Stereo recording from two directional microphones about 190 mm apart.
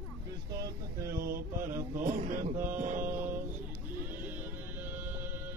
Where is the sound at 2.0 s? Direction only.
45° right (ahead or behind).